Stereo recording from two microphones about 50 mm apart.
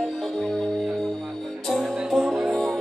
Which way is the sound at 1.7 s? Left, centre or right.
Centre.